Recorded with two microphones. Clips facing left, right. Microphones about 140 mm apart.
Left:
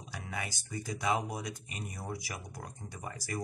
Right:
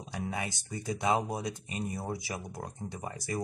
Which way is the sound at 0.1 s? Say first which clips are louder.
Right 5 dB; 20° right (ahead or behind).